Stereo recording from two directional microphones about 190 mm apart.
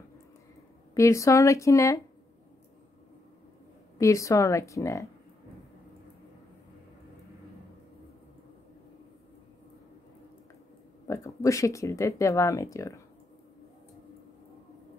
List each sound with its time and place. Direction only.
0.9 s speech: 15° left (ahead or behind)
4.0 s speech: 15° left (ahead or behind)
11.1 s speech: 15° left (ahead or behind)